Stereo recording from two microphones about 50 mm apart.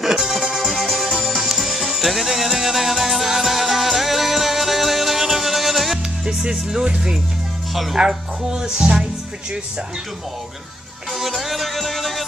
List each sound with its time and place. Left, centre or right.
0.0 s music: centre
6.2 s speech: centre
7.7 s speech: centre
8.0 s speech: centre
11.1 s music: centre